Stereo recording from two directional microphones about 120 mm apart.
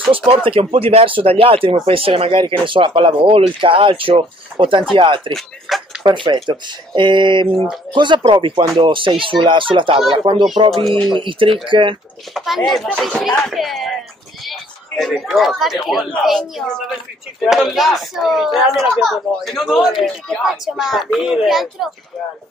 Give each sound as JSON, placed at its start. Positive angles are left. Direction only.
{"t": 0.5, "sound": "speech", "side_deg": -50}
{"t": 5.3, "sound": "a sound", "side_deg": 0}
{"t": 6.0, "sound": "speech", "side_deg": -40}
{"t": 10.7, "sound": "a woman's voice", "side_deg": 0}
{"t": 11.1, "sound": "speech", "side_deg": -45}
{"t": 12.4, "sound": "a woman's voice", "side_deg": 0}